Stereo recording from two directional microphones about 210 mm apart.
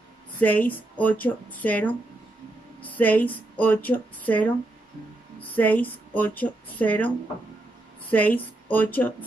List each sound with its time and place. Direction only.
0.4 s a woman's voice: 10° left (ahead or behind)
8.1 s a woman's voice: 10° left (ahead or behind)